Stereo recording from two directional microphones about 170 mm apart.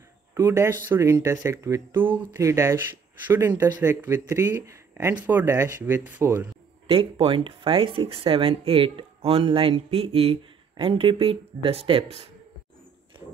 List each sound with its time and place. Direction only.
0.3 s speech: 15° right (ahead or behind)
6.9 s speech: 30° right (ahead or behind)